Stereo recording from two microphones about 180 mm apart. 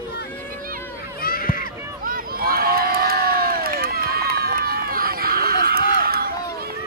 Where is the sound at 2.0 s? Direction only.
55° right (ahead or behind).